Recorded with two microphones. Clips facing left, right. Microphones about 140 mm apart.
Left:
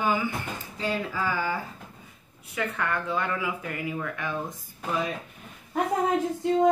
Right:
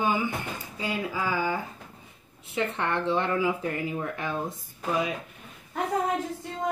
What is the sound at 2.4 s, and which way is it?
Speech, 25° right (ahead or behind).